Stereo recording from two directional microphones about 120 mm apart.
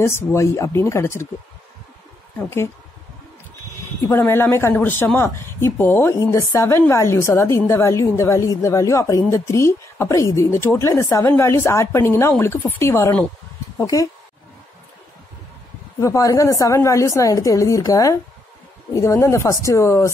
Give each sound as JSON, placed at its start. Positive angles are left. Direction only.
{"t": 0.0, "sound": "a woman's voice", "side_deg": 25}
{"t": 2.3, "sound": "a woman's voice", "side_deg": 25}
{"t": 4.1, "sound": "a woman's voice", "side_deg": 20}
{"t": 16.0, "sound": "a woman's voice", "side_deg": 25}